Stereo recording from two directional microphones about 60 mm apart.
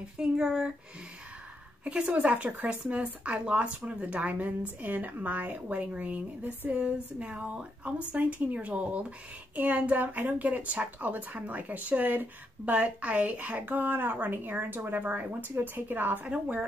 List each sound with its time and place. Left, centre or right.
0.2 s speech: centre
1.9 s a woman's voice: centre
16.3 s a woman's voice: right